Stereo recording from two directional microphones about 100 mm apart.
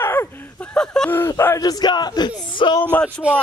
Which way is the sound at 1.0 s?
25° left (ahead or behind).